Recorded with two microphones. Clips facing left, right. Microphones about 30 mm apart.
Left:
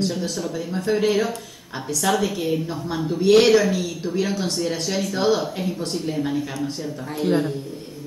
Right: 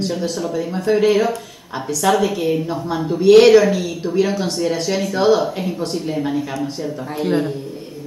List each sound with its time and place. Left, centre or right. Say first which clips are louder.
0.0 s a woman's voice: right 3 dB; centre